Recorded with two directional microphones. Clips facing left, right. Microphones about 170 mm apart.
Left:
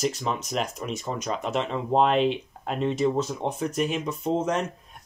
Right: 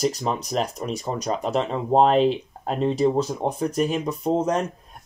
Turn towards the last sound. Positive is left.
turn(degrees=-35)  # may be behind; listen again after turning